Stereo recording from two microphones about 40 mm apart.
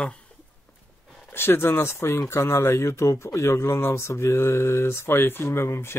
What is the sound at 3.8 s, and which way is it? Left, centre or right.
Speech, left.